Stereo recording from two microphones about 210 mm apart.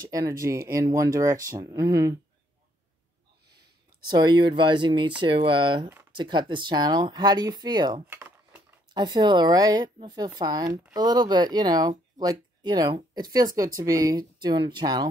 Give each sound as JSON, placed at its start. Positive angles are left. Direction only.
{"t": 0.0, "sound": "speech", "side_deg": -15}
{"t": 3.4, "sound": "a sound", "side_deg": -50}
{"t": 4.1, "sound": "speech", "side_deg": -20}